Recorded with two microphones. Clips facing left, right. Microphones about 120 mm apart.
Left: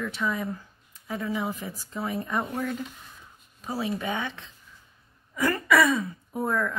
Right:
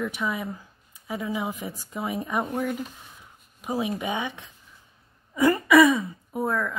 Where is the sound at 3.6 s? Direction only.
15° right (ahead or behind).